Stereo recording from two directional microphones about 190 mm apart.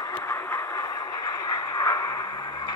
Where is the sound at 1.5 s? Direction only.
20° left (ahead or behind).